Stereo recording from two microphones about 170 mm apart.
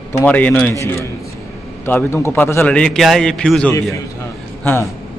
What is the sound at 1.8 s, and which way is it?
A man's voice, 15° left (ahead or behind).